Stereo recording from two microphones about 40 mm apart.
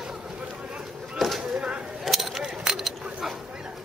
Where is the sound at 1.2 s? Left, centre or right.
Centre.